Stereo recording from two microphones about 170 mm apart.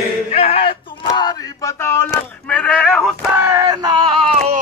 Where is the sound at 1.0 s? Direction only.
25° left (ahead or behind).